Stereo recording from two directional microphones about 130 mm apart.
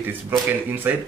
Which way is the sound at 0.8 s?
15° right (ahead or behind).